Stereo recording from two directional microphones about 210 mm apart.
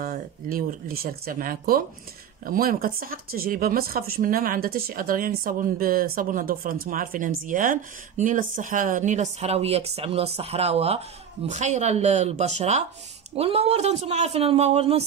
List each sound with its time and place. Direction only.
0.0 s speech: 40° right (ahead or behind)